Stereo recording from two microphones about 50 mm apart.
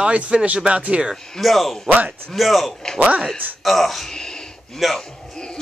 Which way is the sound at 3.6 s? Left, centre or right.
Centre.